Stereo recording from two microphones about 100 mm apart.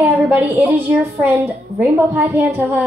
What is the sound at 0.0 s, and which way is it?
A woman's voice, 15° right (ahead or behind).